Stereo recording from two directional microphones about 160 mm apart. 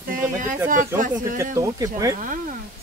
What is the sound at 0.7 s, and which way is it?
Speech, 55° right (ahead or behind).